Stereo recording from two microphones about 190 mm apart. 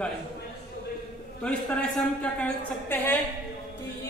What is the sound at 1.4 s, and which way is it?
A woman's voice, 5° left (ahead or behind).